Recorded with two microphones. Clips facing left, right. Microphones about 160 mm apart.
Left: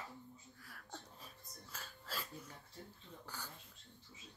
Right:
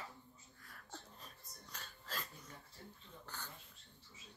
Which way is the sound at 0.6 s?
5° left (ahead or behind).